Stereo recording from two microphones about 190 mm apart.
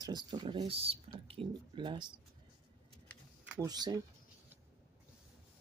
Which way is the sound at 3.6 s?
20° right (ahead or behind).